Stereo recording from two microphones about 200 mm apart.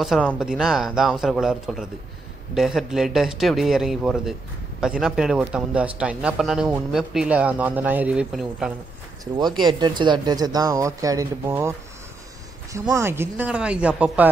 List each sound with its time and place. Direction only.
0.0 s speech: centre (ahead or behind)
9.2 s speech: 20° right (ahead or behind)
12.7 s speech: 15° right (ahead or behind)